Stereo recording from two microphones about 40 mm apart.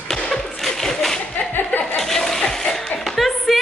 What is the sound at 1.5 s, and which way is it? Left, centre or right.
Chuckle, left.